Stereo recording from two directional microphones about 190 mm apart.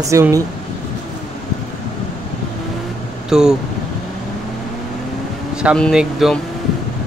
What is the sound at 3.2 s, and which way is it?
Speech, 5° right (ahead or behind).